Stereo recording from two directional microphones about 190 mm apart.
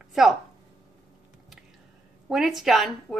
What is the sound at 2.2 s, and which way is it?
Speech, centre (ahead or behind).